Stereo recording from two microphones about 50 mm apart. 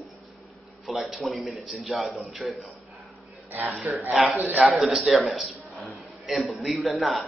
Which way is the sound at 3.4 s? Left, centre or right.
Right.